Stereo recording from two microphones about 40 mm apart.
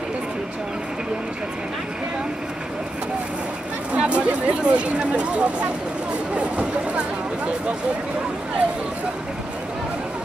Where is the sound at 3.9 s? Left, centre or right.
Right.